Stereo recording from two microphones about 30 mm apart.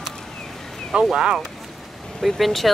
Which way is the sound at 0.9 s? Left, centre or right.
Right.